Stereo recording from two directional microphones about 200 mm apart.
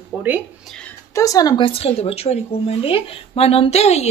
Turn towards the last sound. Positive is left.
turn(degrees=30)  # may be behind; listen again after turning